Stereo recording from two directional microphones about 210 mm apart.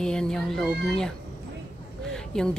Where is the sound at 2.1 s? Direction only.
5° left (ahead or behind).